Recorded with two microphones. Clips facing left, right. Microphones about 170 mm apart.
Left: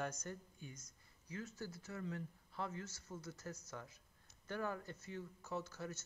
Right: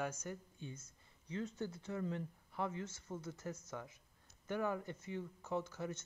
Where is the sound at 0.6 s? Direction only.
30° right (ahead or behind).